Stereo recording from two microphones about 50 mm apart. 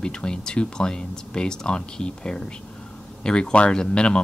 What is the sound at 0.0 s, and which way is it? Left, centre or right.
Speech, centre.